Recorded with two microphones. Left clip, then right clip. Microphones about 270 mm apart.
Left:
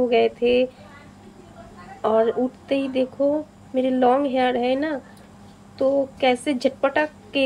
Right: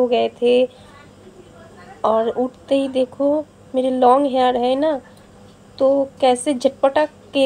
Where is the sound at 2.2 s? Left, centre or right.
Centre.